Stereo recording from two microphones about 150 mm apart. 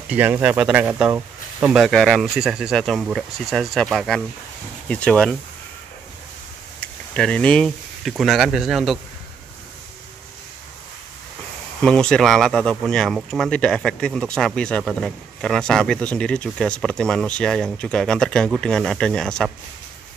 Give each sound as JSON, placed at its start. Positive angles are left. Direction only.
{"t": 0.1, "sound": "speech", "side_deg": -10}
{"t": 6.8, "sound": "speech", "side_deg": 5}
{"t": 11.8, "sound": "speech", "side_deg": 5}